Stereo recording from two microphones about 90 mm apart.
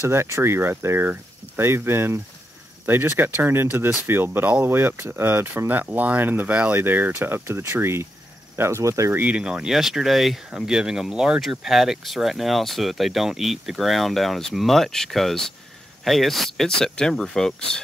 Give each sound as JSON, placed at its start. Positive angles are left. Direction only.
{"t": 0.0, "sound": "speech", "side_deg": -30}
{"t": 9.1, "sound": "speech", "side_deg": -15}